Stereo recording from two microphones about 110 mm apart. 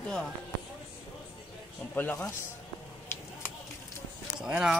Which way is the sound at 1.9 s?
15° left (ahead or behind).